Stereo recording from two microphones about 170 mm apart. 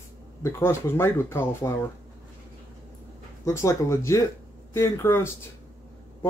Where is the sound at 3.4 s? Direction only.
15° left (ahead or behind).